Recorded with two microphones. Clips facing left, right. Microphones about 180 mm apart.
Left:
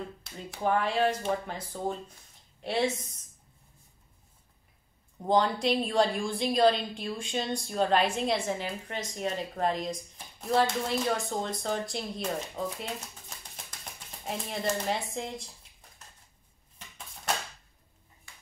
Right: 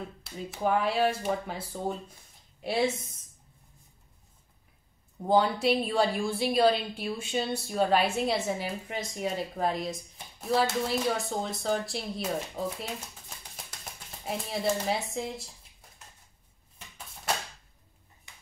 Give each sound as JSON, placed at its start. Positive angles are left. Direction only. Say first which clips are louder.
{"t": 0.5, "sound": "speech", "louder": "right 1 dB", "side_deg": -5}
{"t": 5.2, "sound": "a woman's voice", "louder": "right 1 dB", "side_deg": -5}
{"t": 14.2, "sound": "a woman's voice", "louder": "right 2 dB", "side_deg": -5}
{"t": 18.3, "sound": "ping", "louder": "even", "side_deg": -20}